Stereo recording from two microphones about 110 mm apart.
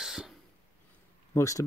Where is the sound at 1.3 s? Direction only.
30° left (ahead or behind).